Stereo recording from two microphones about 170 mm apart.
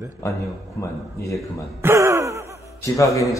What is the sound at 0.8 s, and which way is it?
Speech, 20° left (ahead or behind).